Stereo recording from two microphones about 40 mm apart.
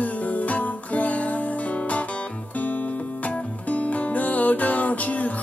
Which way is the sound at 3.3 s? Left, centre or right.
Left.